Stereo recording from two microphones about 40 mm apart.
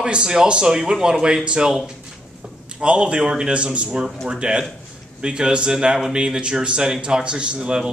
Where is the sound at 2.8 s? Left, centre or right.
Right.